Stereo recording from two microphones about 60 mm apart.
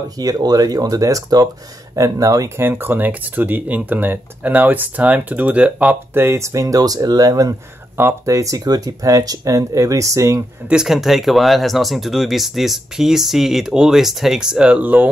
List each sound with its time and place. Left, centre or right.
0.2 s speech: right
2.5 s speech: right
6.1 s speech: right
8.3 s speech: right
10.7 s speech: centre; by 15.0 s right